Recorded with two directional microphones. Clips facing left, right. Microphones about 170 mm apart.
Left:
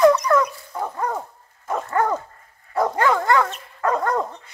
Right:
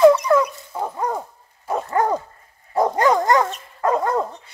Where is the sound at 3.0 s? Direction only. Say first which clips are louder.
Right 2 dB; 20° right (ahead or behind).